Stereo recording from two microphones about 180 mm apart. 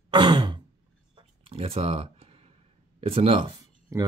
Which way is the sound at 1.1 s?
30° right (ahead or behind).